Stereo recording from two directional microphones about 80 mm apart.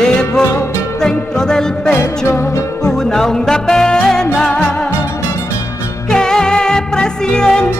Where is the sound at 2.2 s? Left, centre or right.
Left.